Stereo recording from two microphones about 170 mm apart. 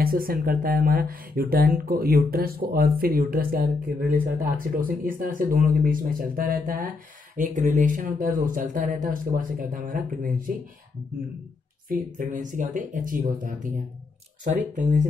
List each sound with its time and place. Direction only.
0.0 s speech: 60° right (ahead or behind)
11.9 s speech: 50° right (ahead or behind)